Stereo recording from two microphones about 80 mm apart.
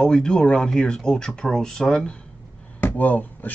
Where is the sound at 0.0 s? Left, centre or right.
Centre.